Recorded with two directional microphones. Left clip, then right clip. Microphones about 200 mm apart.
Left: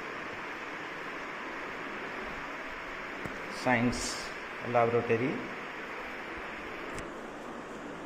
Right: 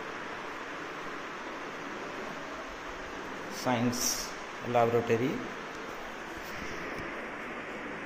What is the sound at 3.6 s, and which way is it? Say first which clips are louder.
Speech: left 2 dB; 10° left (ahead or behind).